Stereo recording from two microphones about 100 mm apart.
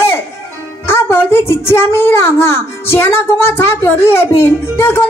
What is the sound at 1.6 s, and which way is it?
Speech, 25° left (ahead or behind).